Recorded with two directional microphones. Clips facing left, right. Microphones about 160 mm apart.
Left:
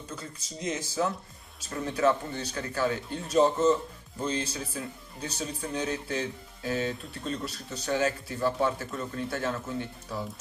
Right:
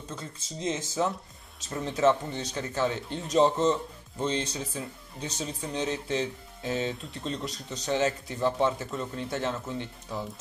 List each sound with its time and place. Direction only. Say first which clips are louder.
0.1 s speech: right 2 dB; 25° right (ahead or behind)